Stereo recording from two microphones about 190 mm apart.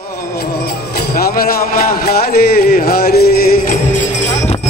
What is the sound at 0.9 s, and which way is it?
A man's voice, 50° left (ahead or behind).